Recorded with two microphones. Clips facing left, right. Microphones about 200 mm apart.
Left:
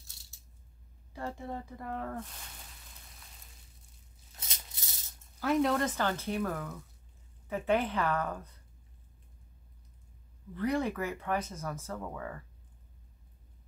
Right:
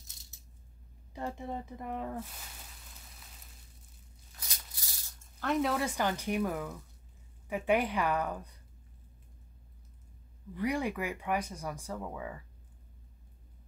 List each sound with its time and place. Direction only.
0.0 s coin: 20° right (ahead or behind)
1.1 s speech: 20° right (ahead or behind)
4.4 s maraca: 25° left (ahead or behind)
5.4 s speech: centre (ahead or behind)
10.5 s speech: 10° right (ahead or behind)